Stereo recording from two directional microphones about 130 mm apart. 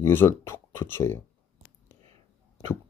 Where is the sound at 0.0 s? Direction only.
15° left (ahead or behind).